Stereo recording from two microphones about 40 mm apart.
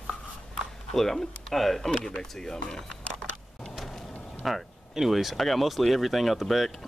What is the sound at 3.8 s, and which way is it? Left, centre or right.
Vehicle, centre.